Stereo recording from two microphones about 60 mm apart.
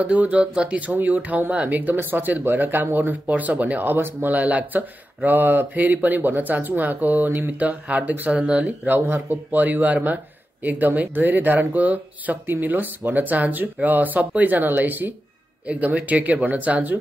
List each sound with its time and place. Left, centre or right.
0.0 s speech: right